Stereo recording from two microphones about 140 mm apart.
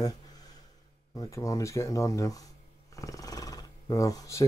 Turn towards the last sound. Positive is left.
turn(degrees=25)  # may be behind; listen again after turning